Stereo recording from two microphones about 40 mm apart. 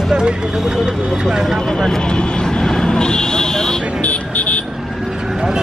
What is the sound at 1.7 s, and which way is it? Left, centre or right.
Vehicle, centre.